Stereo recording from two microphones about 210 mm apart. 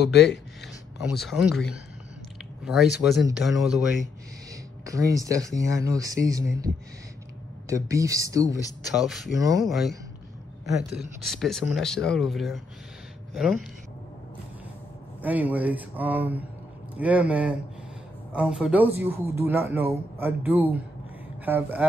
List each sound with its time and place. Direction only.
0.9 s speech: centre (ahead or behind)
4.8 s speech: 15° right (ahead or behind)
7.7 s speech: 15° right (ahead or behind)
8.9 s speech: centre (ahead or behind)
15.2 s speech: 10° right (ahead or behind)